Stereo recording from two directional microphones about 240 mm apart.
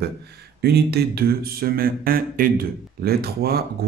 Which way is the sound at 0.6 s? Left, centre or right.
Right.